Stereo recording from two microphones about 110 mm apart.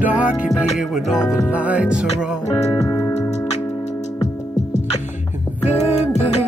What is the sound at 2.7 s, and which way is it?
Music, 30° left (ahead or behind).